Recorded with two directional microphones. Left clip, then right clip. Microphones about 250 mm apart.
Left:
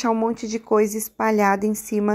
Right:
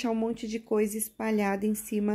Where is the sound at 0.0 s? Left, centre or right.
Centre.